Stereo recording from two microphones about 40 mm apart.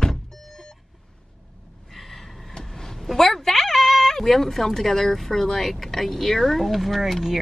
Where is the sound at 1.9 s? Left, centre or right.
Centre.